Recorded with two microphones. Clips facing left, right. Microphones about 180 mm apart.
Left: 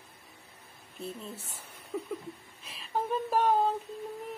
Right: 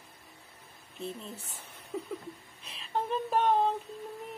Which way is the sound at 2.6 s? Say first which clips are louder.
Even; 5° left (ahead or behind).